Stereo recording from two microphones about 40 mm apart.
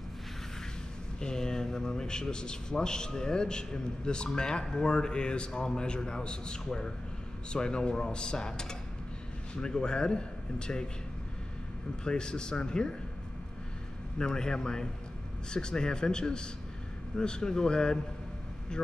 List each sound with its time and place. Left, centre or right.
1.2 s a man's voice: centre
12.0 s a man's voice: left
14.1 s a man's voice: centre